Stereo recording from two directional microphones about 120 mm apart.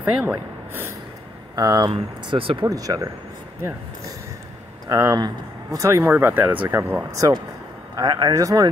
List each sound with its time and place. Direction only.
0.0 s a sound: 15° right (ahead or behind)
1.5 s speech: 30° right (ahead or behind)
1.9 s speech: 45° right (ahead or behind)
2.6 s speech: 30° right (ahead or behind)
4.8 s speech: 30° right (ahead or behind)
6.0 s speech: 15° right (ahead or behind)
7.2 s speech: 35° right (ahead or behind)